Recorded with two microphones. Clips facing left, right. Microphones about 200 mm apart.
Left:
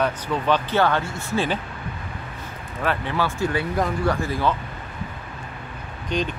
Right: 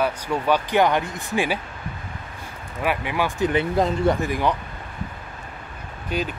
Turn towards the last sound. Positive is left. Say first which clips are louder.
# left 1 dB
turn(degrees=-5)  # may be behind; listen again after turning